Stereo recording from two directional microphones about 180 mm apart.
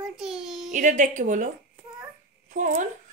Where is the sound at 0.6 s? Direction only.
45° right (ahead or behind).